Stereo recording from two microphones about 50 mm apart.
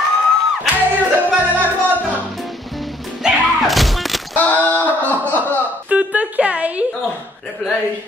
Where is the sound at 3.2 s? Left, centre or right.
Centre.